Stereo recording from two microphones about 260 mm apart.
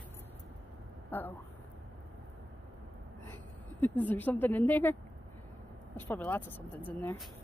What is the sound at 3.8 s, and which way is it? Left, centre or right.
Speech, centre.